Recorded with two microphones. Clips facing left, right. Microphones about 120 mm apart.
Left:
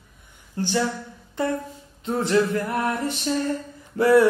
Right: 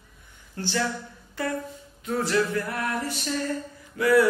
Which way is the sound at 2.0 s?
25° left (ahead or behind).